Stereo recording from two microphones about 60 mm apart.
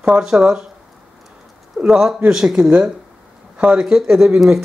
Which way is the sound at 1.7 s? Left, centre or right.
Centre.